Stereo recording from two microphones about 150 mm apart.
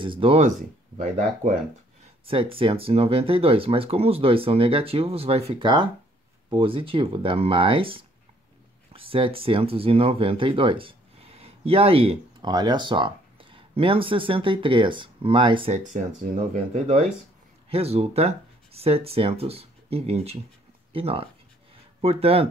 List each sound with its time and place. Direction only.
0.0 s speech: 35° right (ahead or behind)
0.9 s speech: 55° right (ahead or behind)
2.2 s speech: 40° right (ahead or behind)
15.9 s speech: 50° right (ahead or behind)